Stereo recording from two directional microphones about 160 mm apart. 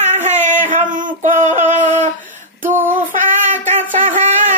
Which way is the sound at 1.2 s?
50° right (ahead or behind).